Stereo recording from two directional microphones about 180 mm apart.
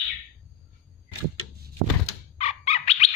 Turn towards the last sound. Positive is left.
turn(degrees=35)  # may be behind; listen again after turning